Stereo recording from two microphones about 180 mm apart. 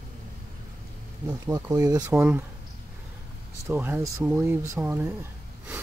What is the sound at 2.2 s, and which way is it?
Speech, 10° right (ahead or behind).